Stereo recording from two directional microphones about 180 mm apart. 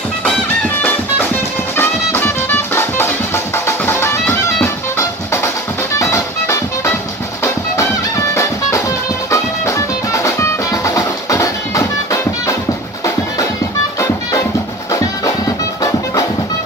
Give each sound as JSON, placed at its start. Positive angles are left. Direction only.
{"t": 0.8, "sound": "music", "side_deg": 10}
{"t": 8.4, "sound": "music", "side_deg": 15}
{"t": 13.9, "sound": "music", "side_deg": 15}